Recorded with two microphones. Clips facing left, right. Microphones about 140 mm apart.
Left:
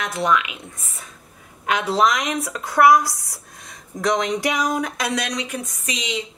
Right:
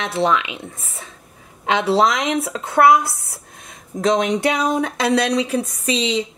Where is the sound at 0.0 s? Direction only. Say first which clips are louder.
Right 2 dB; 30° right (ahead or behind).